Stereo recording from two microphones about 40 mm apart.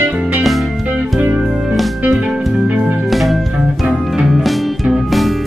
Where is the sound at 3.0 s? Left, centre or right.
Centre.